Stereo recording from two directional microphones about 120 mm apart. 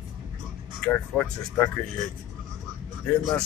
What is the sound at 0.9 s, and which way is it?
Speech, 10° left (ahead or behind).